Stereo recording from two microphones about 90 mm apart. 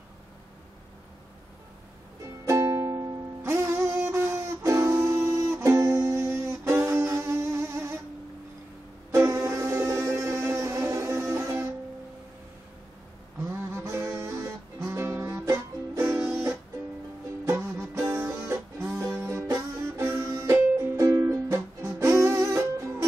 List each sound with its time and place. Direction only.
2.4 s music: 35° right (ahead or behind)
9.1 s music: 35° right (ahead or behind)
13.4 s music: 30° right (ahead or behind)
17.5 s music: 30° right (ahead or behind)